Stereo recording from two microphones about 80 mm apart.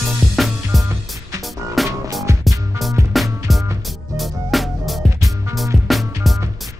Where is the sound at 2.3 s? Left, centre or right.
Right.